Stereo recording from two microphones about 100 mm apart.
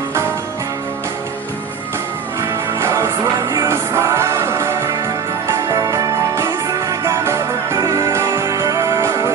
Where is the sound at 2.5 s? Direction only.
25° right (ahead or behind).